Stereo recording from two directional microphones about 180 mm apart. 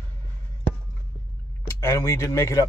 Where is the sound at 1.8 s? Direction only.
15° left (ahead or behind).